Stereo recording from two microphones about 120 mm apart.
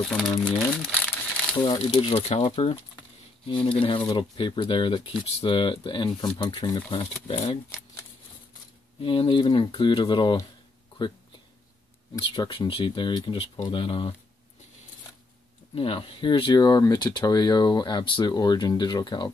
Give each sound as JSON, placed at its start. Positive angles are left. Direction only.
{"t": 0.0, "sound": "speech", "side_deg": 5}
{"t": 0.7, "sound": "crumpling", "side_deg": 5}
{"t": 1.6, "sound": "speech", "side_deg": 45}
{"t": 7.2, "sound": "speech", "side_deg": 60}
{"t": 9.0, "sound": "speech", "side_deg": 45}
{"t": 12.2, "sound": "speech", "side_deg": 45}
{"t": 15.7, "sound": "speech", "side_deg": 50}